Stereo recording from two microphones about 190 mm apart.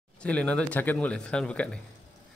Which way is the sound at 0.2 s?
5° left (ahead or behind).